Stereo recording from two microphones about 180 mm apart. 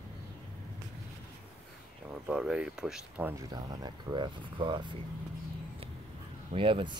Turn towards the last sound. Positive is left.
turn(degrees=-30)  # may be behind; listen again after turning